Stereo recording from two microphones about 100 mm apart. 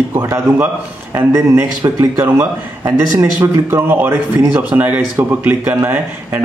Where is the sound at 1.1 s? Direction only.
25° right (ahead or behind).